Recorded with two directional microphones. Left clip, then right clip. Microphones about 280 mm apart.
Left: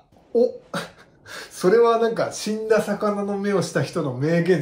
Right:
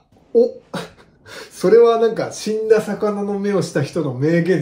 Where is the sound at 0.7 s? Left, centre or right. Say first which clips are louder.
Right 1 dB; centre.